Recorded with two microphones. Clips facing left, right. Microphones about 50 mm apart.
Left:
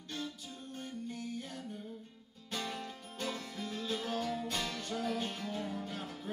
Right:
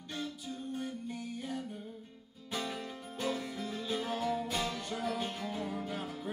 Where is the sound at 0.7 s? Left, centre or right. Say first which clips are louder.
Right 3 dB; centre.